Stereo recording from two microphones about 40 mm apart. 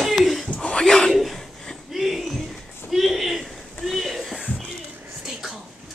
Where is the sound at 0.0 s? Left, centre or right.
Centre.